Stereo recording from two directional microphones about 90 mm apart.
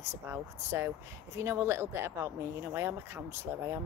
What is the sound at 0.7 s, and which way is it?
Speech, 25° right (ahead or behind).